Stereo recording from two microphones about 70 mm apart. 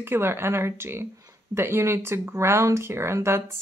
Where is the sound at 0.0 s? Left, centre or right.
Right.